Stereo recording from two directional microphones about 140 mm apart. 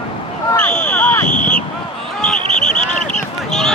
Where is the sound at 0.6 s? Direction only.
10° left (ahead or behind).